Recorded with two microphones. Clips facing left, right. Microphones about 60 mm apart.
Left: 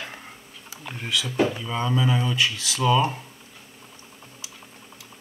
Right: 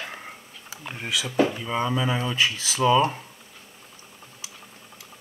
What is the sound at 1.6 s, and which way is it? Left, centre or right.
Speech, centre.